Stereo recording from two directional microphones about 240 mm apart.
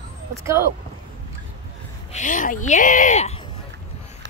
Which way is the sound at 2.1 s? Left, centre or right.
Left.